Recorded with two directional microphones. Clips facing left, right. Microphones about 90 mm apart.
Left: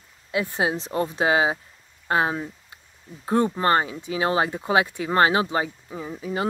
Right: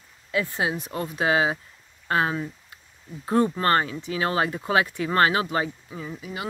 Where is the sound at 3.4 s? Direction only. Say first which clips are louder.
Left 1 dB; 20° left (ahead or behind).